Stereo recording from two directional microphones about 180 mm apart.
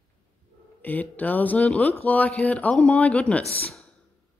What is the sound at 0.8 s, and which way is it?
Speech, 10° left (ahead or behind).